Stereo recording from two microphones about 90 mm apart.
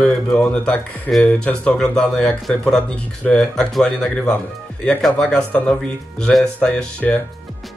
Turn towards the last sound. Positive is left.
turn(degrees=15)  # may be behind; listen again after turning